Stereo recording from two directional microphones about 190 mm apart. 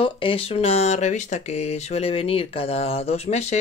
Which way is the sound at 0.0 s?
30° left (ahead or behind).